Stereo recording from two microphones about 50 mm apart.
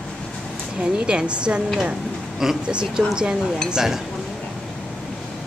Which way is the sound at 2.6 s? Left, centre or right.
Centre.